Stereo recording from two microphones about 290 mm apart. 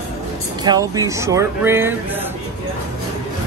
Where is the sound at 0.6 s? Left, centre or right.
Centre.